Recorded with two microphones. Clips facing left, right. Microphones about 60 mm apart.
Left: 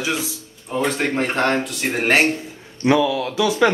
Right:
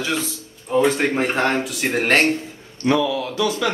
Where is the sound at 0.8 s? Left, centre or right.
Centre.